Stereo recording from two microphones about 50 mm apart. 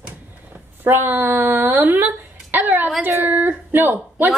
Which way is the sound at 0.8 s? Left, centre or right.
Right.